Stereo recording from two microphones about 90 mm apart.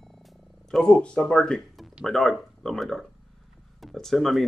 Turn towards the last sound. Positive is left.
turn(degrees=0)  # may be behind; listen again after turning